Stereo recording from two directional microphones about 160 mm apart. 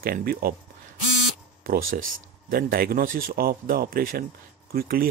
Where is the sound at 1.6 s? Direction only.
65° right (ahead or behind).